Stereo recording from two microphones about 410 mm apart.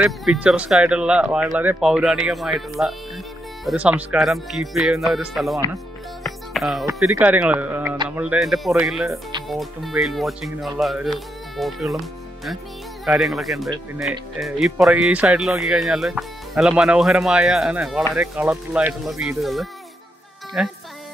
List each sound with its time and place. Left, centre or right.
0.0 s speech: centre
13.0 s speech: centre